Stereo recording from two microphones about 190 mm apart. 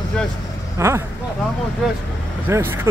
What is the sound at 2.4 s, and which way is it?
Speech, 10° right (ahead or behind).